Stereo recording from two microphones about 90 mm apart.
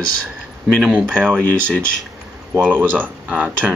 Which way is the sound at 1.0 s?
10° left (ahead or behind).